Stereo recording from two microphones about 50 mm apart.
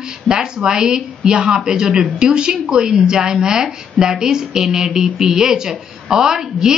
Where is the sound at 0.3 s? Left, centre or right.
Centre.